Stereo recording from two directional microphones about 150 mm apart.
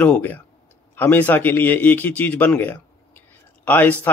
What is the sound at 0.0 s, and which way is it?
Speech, 10° left (ahead or behind).